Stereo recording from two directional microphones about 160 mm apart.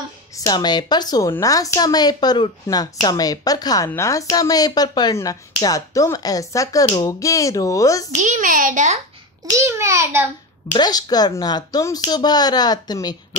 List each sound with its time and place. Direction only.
0.5 s speech: 25° left (ahead or behind)
8.2 s a child's voice: 55° right (ahead or behind)
9.6 s a child's voice: 15° right (ahead or behind)
10.8 s speech: 25° left (ahead or behind)